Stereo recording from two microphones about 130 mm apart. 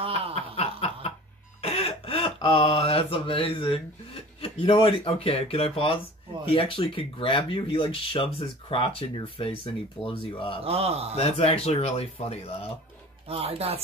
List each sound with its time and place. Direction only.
0.0 s snicker: 50° right (ahead or behind)
0.6 s snicker: 55° left (ahead or behind)
1.6 s a sound: 50° left (ahead or behind)
6.4 s speech: 45° left (ahead or behind)
10.6 s a man's voice: 50° right (ahead or behind)
11.1 s speech: 50° left (ahead or behind)
13.3 s a man's voice: 50° right (ahead or behind)